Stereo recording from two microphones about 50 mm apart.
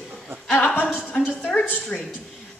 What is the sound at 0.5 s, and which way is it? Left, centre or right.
Speech, left.